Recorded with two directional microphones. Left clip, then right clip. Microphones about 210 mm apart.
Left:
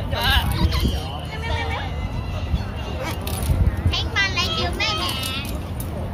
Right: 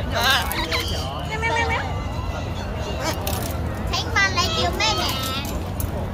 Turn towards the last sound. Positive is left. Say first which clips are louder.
# right 1 dB
turn(degrees=-20)  # may be behind; listen again after turning